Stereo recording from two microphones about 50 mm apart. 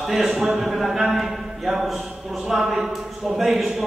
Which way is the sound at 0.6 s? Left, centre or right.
Centre.